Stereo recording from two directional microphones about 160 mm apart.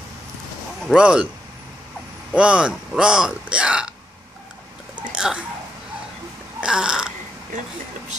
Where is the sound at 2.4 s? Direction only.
5° right (ahead or behind).